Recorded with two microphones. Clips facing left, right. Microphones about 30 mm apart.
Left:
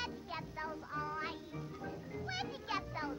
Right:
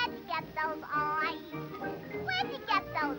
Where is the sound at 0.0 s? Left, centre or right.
Right.